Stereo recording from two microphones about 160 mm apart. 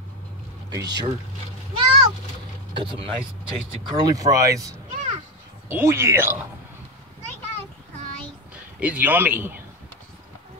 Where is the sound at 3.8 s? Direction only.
25° right (ahead or behind).